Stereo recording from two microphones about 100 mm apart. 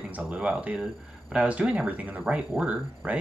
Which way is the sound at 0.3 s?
15° right (ahead or behind).